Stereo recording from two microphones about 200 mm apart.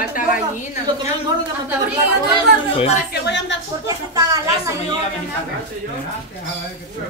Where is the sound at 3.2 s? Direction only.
60° left (ahead or behind).